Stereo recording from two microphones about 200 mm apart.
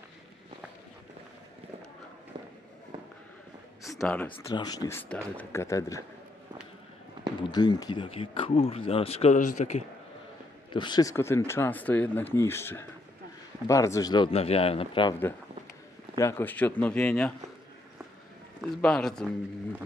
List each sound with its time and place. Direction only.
4.0 s speech: 5° left (ahead or behind)
4.3 s speech: 20° left (ahead or behind)
7.4 s speech: 20° left (ahead or behind)
10.7 s speech: 20° left (ahead or behind)
16.2 s speech: 10° left (ahead or behind)
18.6 s a man's voice: 5° left (ahead or behind)